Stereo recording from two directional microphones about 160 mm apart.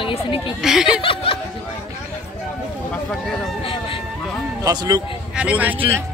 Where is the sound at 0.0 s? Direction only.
30° left (ahead or behind).